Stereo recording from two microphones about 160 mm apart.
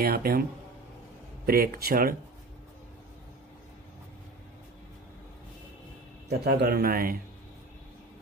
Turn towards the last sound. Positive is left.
turn(degrees=-65)  # may be behind; listen again after turning